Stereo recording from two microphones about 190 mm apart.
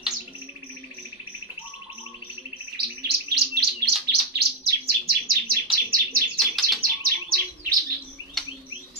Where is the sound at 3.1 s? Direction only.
55° right (ahead or behind).